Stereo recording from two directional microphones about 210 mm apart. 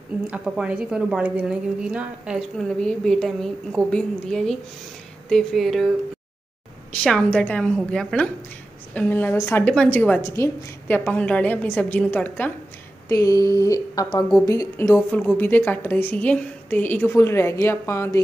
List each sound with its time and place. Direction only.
0.3 s a woman's voice: 5° right (ahead or behind)
6.9 s a woman's voice: 5° left (ahead or behind)